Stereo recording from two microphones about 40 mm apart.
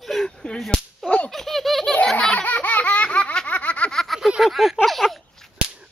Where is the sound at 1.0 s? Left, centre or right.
Left.